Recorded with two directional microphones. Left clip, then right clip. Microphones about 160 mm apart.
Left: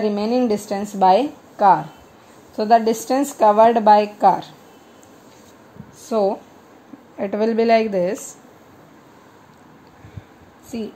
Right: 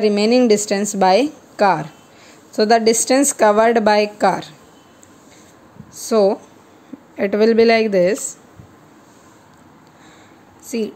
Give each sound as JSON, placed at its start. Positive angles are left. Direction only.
{"t": 0.0, "sound": "a woman's voice", "side_deg": -45}
{"t": 5.9, "sound": "a woman's voice", "side_deg": -45}
{"t": 7.2, "sound": "a woman's voice", "side_deg": -30}
{"t": 10.7, "sound": "speech", "side_deg": -40}